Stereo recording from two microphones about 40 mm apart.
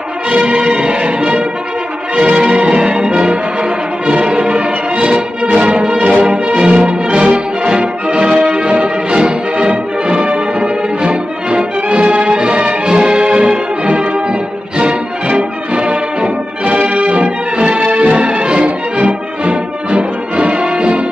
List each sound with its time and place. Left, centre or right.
0.3 s music: right
0.6 s music: right
6.6 s brass instrument: right
7.1 s music: right
9.7 s brass instrument: right
12.8 s music: right